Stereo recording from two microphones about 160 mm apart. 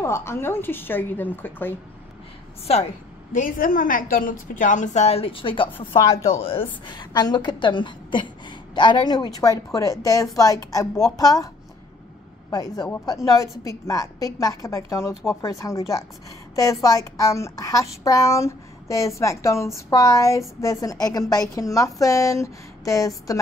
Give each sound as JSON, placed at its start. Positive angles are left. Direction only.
{"t": 0.0, "sound": "speech", "side_deg": 15}
{"t": 3.3, "sound": "a woman's voice", "side_deg": 60}
{"t": 6.9, "sound": "a woman's voice", "side_deg": 25}